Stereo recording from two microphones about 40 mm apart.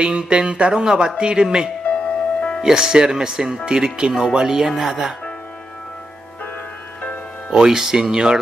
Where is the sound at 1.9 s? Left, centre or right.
Left.